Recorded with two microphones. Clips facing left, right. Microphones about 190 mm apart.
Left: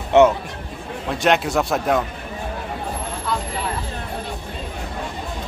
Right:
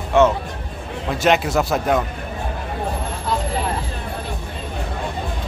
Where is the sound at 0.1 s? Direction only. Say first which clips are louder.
Left 2 dB; 20° left (ahead or behind).